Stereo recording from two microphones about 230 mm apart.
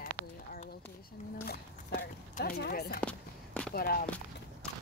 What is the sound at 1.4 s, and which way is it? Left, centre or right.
Speech, left.